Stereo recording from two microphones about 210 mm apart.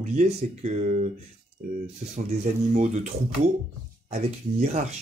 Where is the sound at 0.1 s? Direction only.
35° right (ahead or behind).